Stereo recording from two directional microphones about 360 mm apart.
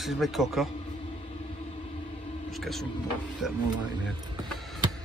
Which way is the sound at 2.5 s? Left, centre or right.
Centre.